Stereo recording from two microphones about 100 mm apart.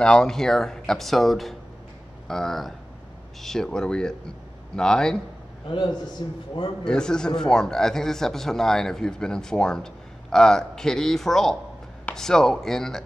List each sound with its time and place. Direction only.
0.0 s a man's voice: 5° left (ahead or behind)
5.7 s a man's voice: 55° left (ahead or behind)
6.8 s a man's voice: 5° left (ahead or behind)